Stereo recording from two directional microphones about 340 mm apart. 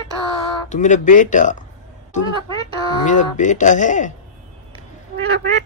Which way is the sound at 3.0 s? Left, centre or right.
Left.